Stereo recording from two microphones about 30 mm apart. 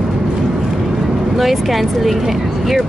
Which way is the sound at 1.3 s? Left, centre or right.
Centre.